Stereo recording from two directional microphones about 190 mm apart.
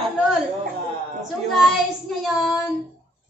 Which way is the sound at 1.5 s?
Centre (ahead or behind).